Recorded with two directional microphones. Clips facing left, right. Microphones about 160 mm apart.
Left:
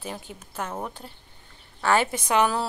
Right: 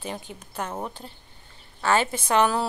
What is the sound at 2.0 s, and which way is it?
Speech, 15° left (ahead or behind).